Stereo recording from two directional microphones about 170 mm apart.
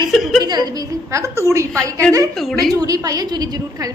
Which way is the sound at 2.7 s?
20° right (ahead or behind).